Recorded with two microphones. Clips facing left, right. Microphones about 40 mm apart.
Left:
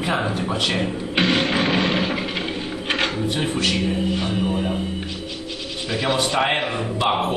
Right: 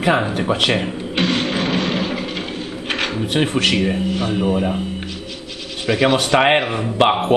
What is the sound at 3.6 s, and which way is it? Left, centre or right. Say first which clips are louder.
Speech: right 4 dB; right.